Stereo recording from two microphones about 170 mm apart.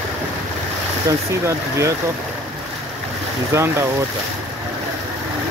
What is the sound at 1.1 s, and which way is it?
Speech, 15° right (ahead or behind).